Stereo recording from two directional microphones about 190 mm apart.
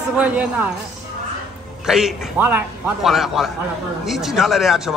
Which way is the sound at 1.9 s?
5° right (ahead or behind).